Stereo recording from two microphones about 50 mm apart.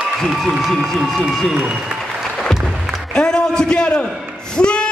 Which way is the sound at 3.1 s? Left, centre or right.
Centre.